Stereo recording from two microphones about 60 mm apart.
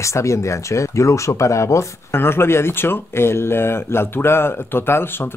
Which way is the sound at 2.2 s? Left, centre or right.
Left.